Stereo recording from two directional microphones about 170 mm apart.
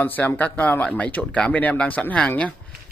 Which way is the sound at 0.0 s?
10° left (ahead or behind).